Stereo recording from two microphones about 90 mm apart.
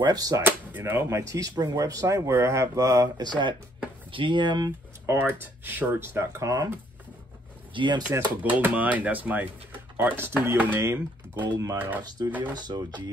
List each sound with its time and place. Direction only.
0.0 s speech: 45° right (ahead or behind)
0.4 s speech: 25° right (ahead or behind); by 4.7 s 55° right (ahead or behind)
5.0 s speech: 25° right (ahead or behind)
7.7 s speech: 60° right (ahead or behind)
8.4 s speech: 20° right (ahead or behind)
11.4 s speech: 40° right (ahead or behind)
12.3 s speech: 20° right (ahead or behind)
12.5 s speech: 50° right (ahead or behind)